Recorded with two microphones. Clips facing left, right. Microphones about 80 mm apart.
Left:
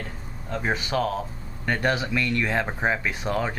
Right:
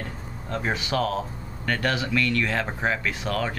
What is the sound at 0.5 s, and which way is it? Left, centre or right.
Speech, centre.